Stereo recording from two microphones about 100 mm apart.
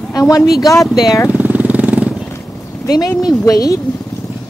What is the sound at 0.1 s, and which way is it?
A woman's voice, 35° left (ahead or behind).